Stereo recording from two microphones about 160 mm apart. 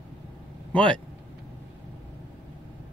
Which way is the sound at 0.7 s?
5° left (ahead or behind).